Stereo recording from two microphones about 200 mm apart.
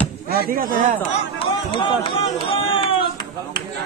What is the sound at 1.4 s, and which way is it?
Speech, 25° left (ahead or behind).